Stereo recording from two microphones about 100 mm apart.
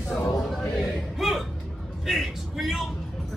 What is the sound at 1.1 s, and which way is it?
Music, centre (ahead or behind).